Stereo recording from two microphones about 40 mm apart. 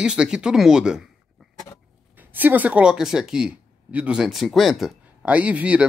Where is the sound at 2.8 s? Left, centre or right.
Centre.